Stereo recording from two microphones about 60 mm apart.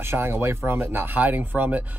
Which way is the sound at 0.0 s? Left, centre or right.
Right.